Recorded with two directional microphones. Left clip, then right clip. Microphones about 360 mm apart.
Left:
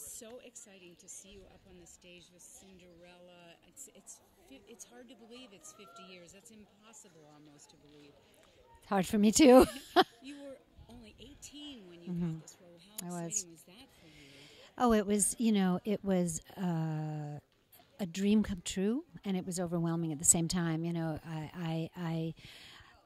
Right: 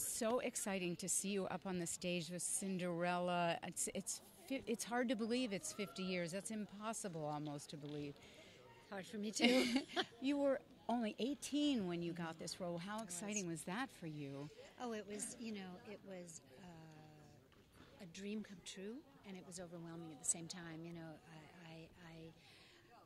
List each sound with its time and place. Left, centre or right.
0.1 s a woman's voice: centre
0.7 s speech: right
8.8 s speech: left
10.2 s speech: centre
11.0 s speech: right
11.6 s speech: centre
12.9 s speech: left